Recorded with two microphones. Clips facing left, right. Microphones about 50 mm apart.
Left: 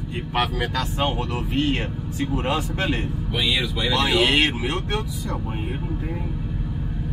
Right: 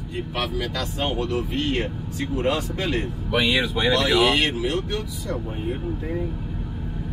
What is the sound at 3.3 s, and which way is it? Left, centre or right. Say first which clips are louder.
Speech: right 3 dB; right.